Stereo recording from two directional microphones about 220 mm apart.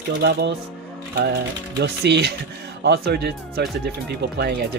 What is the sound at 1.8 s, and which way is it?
Speech, 50° right (ahead or behind).